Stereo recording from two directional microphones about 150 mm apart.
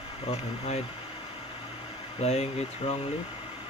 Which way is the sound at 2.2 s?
45° left (ahead or behind).